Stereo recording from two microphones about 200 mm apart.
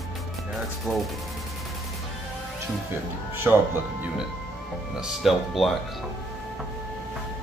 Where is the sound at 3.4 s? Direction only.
10° right (ahead or behind).